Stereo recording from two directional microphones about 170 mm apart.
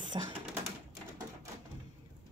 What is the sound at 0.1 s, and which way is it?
Speech, 25° right (ahead or behind).